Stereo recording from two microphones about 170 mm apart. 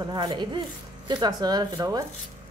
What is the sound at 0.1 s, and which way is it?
Speech, 25° right (ahead or behind).